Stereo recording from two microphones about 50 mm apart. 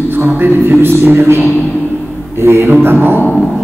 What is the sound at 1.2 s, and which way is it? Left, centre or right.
A man's voice, right.